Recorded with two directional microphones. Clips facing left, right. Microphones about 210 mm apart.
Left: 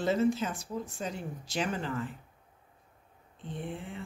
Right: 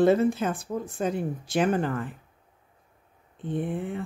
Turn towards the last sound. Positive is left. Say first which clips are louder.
# right 10 dB
turn(degrees=-55)  # may be behind; listen again after turning